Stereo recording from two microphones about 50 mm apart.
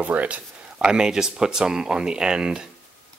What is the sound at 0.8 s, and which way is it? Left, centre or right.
Speech, centre.